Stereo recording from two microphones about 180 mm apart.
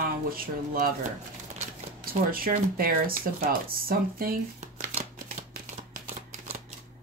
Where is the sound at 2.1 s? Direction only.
55° right (ahead or behind).